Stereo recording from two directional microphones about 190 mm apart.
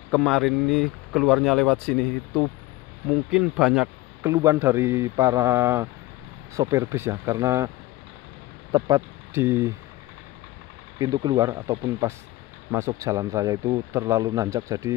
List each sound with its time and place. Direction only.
0.1 s a man's voice: centre (ahead or behind); by 7.7 s 15° right (ahead or behind)
8.7 s speech: 20° right (ahead or behind)
11.2 s a man's voice: 20° right (ahead or behind)